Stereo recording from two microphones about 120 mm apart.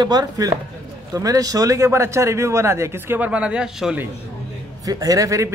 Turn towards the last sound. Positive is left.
turn(degrees=-25)  # may be behind; listen again after turning